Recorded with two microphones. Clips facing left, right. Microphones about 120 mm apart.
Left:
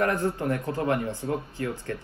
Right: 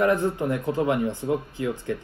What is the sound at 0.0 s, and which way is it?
A man's voice, 15° right (ahead or behind).